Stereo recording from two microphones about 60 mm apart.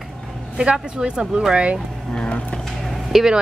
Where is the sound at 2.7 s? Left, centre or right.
Centre.